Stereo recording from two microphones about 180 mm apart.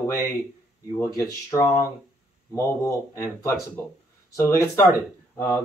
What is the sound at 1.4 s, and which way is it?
Speech, 20° left (ahead or behind).